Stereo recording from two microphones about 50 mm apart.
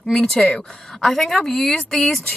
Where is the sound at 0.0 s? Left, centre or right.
Centre.